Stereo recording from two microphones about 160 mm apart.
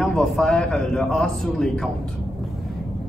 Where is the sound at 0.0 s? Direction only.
Centre (ahead or behind).